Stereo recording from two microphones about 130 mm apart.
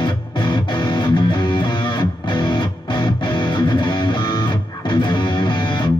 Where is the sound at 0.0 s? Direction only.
40° left (ahead or behind).